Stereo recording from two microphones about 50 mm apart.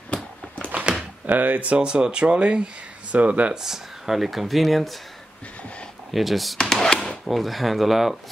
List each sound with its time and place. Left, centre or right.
0.7 s a sound: right
1.2 s speech: right
3.5 s speech: centre
6.1 s speech: centre
6.6 s a sound: centre
7.2 s speech: centre